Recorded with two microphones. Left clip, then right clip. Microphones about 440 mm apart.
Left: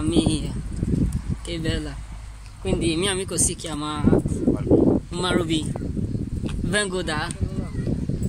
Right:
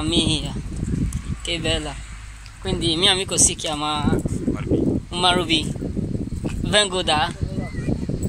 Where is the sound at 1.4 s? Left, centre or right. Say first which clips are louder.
Right 6 dB; centre.